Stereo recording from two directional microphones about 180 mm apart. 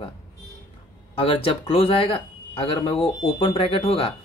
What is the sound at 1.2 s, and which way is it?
Speech, 30° left (ahead or behind).